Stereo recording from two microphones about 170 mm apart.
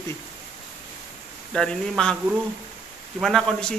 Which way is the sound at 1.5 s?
5° left (ahead or behind).